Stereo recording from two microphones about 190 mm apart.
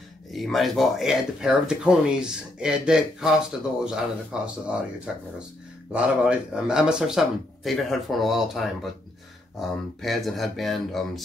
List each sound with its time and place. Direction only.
0.3 s speech: centre (ahead or behind)